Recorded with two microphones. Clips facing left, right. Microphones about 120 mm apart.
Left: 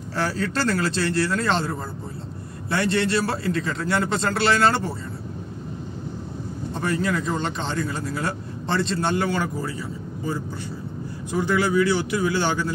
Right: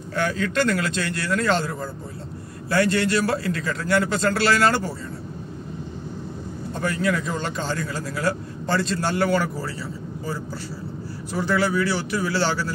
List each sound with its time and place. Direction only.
0.1 s a man's voice: 35° left (ahead or behind)
6.8 s a man's voice: 25° left (ahead or behind)
11.3 s speech: 15° left (ahead or behind)